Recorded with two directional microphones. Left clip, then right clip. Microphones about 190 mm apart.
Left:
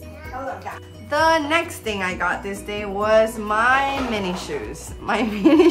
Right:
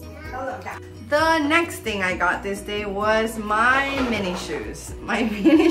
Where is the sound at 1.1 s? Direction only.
15° left (ahead or behind).